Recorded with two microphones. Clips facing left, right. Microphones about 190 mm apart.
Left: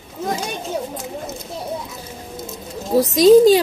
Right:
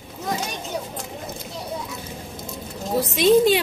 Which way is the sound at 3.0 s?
40° left (ahead or behind).